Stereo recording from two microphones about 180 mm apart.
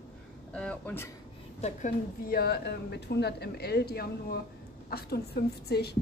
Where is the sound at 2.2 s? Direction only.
60° left (ahead or behind).